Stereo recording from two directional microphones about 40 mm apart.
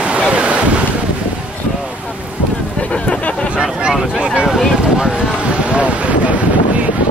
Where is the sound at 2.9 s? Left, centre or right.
Left.